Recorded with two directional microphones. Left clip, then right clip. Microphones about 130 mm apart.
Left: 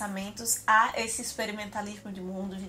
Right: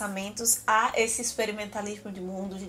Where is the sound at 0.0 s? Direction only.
30° right (ahead or behind).